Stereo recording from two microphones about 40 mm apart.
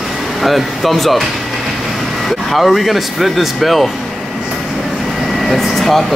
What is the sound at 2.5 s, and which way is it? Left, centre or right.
Speech, centre.